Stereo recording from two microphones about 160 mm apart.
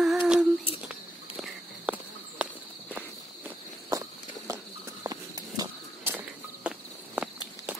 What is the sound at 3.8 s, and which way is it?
Walk, 20° right (ahead or behind).